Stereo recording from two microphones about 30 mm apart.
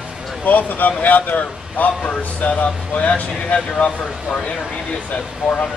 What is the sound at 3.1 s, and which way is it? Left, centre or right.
Speech, left.